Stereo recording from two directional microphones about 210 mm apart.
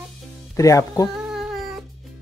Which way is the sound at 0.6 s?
15° left (ahead or behind).